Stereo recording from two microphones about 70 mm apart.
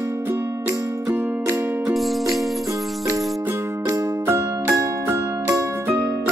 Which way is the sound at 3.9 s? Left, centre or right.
Right.